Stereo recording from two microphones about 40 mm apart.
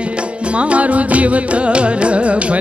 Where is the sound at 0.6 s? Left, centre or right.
Right.